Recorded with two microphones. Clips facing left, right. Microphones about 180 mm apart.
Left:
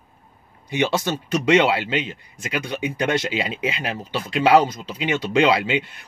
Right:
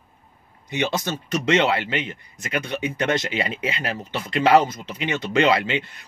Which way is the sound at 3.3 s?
10° left (ahead or behind).